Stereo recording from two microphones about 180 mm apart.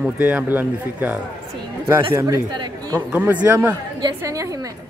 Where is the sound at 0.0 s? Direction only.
10° right (ahead or behind).